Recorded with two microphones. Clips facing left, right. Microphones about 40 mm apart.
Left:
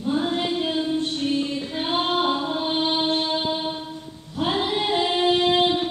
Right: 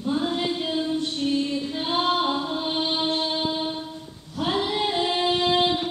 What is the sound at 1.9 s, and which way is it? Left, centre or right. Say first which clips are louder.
Music: left 1 dB; left.